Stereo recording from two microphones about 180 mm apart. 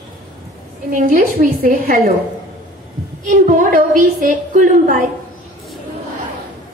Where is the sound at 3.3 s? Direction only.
50° right (ahead or behind).